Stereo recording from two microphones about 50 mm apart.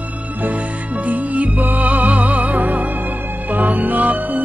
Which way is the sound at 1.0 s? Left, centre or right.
Right.